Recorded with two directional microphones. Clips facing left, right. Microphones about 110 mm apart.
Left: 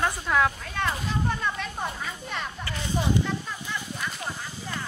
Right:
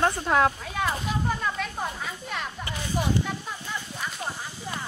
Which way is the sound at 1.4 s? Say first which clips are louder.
Right 1 dB; centre (ahead or behind).